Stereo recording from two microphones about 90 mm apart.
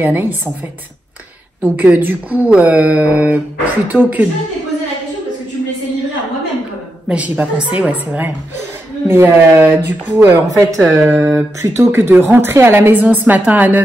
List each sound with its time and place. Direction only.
0.0 s speech: 20° right (ahead or behind)
1.6 s a woman's voice: 20° right (ahead or behind)
7.1 s a woman's voice: 15° right (ahead or behind)